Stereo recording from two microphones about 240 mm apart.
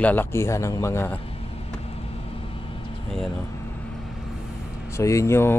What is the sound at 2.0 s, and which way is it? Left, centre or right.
Vehicle, left.